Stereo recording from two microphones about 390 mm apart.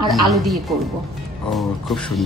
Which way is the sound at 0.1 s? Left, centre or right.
Centre.